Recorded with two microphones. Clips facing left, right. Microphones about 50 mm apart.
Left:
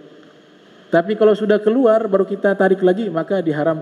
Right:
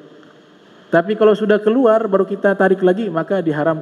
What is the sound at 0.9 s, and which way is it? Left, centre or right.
A man's voice, right.